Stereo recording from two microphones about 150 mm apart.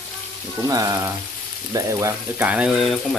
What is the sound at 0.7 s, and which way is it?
Frying, 25° right (ahead or behind).